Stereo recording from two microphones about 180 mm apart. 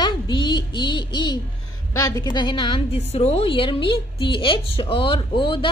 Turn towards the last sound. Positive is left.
turn(degrees=30)  # may be behind; listen again after turning